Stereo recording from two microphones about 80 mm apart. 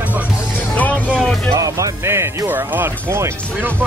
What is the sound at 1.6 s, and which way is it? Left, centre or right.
Speech, right.